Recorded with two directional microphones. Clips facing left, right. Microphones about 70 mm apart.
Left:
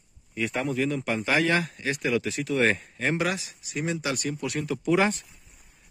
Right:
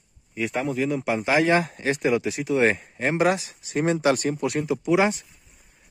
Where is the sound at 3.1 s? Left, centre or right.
Right.